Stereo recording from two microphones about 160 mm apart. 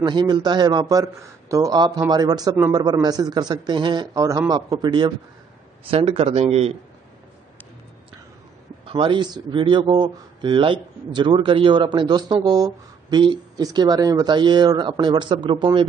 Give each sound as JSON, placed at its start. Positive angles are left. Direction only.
{"t": 0.0, "sound": "speech", "side_deg": -25}
{"t": 5.9, "sound": "a man's voice", "side_deg": -40}
{"t": 8.8, "sound": "speech", "side_deg": -30}